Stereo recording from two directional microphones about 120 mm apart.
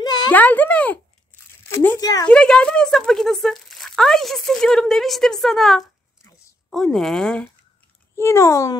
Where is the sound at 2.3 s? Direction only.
10° left (ahead or behind).